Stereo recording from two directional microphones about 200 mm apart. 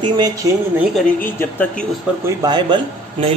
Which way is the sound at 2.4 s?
20° right (ahead or behind).